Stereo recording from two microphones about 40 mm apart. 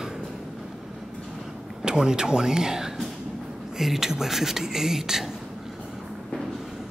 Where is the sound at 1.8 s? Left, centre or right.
Centre.